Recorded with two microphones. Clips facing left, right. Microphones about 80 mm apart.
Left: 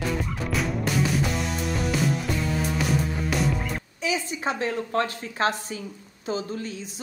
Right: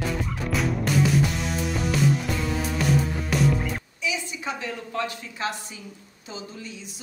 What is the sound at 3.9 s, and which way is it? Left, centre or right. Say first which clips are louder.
A woman's voice: left 3 dB; left.